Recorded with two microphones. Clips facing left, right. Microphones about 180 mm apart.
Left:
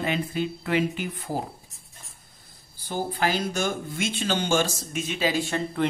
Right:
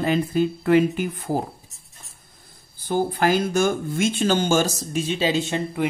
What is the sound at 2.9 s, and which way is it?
Speech, 50° right (ahead or behind).